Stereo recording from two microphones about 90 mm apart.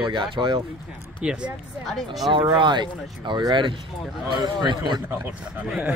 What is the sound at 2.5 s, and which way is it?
Speech, 55° right (ahead or behind).